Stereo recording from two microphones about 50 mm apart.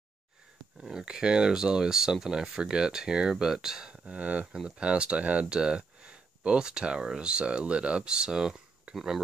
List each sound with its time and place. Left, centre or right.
0.8 s speech: centre
4.1 s speech: right
8.9 s a sound: centre